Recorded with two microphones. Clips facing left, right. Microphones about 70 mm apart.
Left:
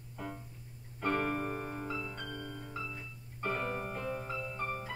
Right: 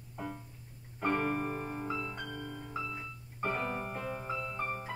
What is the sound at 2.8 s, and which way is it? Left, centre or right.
Piano, centre.